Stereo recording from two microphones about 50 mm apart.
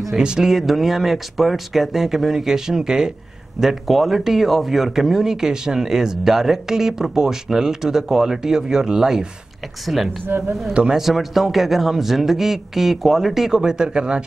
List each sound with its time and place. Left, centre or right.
0.1 s a man's voice: centre
10.3 s speech: right
10.7 s a man's voice: centre
11.0 s a man's voice: centre